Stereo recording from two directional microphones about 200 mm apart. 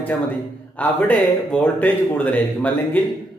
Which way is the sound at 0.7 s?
10° left (ahead or behind).